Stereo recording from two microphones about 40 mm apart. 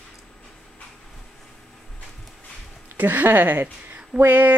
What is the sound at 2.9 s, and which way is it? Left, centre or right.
A woman's voice, right.